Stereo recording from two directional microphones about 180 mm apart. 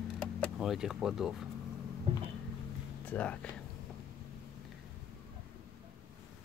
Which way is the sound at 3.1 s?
10° left (ahead or behind).